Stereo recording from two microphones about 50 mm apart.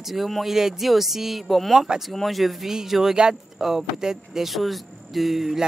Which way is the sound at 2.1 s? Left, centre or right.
Centre.